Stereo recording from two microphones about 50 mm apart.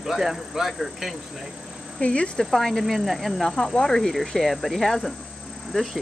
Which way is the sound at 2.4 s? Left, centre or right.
Centre.